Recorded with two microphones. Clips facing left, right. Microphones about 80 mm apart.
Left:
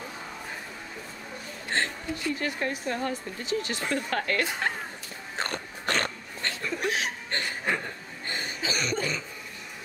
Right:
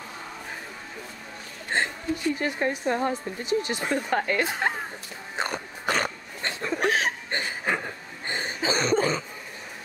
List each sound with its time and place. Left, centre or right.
1.7 s a sound: centre
2.3 s speech: right
5.3 s a sound: centre
6.8 s chuckle: right
7.2 s chuckle: centre
8.3 s cough: right